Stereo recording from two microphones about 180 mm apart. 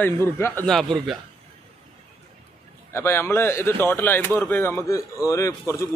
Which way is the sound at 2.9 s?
15° left (ahead or behind).